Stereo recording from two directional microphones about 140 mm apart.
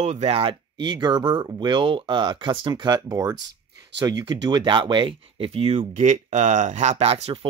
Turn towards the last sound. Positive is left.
turn(degrees=-45)  # may be behind; listen again after turning